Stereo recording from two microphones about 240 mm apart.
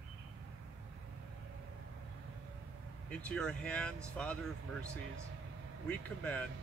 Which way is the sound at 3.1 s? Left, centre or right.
Centre.